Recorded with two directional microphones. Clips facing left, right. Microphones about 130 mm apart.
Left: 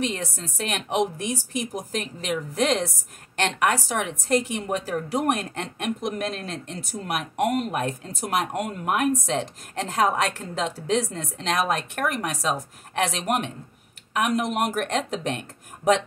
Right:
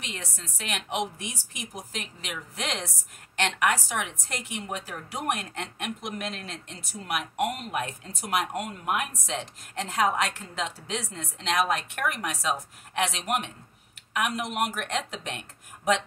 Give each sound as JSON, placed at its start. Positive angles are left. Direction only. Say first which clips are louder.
{"t": 0.0, "sound": "speech", "louder": "left 11 dB", "side_deg": 40}